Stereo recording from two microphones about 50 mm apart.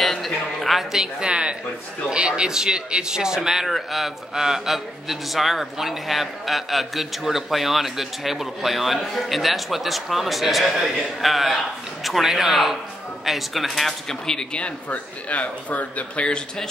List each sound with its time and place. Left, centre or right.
0.0 s a sound: centre
1.0 s a woman's voice: centre
14.9 s speech: left